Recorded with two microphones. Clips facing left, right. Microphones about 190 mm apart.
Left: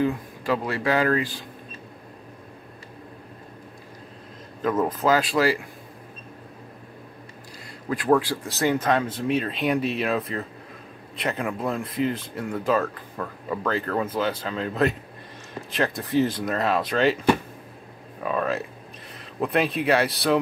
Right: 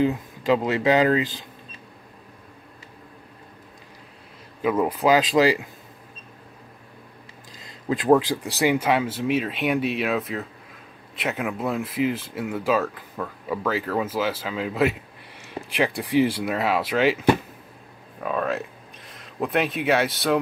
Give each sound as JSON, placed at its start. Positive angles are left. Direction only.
{"t": 0.0, "sound": "speech", "side_deg": -20}
{"t": 4.6, "sound": "speech", "side_deg": -10}
{"t": 7.6, "sound": "speech", "side_deg": -20}
{"t": 18.2, "sound": "speech", "side_deg": 0}